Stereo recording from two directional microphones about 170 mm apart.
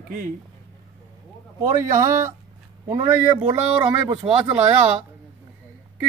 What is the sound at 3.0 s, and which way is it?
Speech, 40° right (ahead or behind).